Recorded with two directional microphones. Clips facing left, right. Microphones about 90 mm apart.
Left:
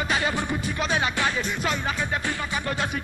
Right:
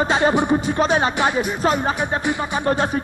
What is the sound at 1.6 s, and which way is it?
Music, 35° right (ahead or behind).